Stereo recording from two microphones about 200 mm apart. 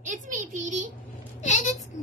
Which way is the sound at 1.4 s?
35° left (ahead or behind).